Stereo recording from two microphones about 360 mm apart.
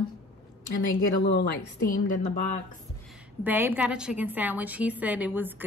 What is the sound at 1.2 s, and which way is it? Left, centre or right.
Speech, left.